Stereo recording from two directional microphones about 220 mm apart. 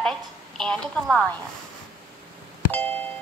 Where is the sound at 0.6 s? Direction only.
Centre (ahead or behind).